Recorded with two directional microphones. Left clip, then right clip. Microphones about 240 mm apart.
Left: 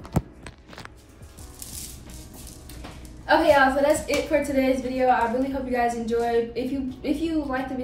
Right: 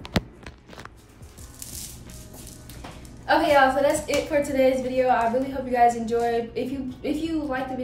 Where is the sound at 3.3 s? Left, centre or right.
Centre.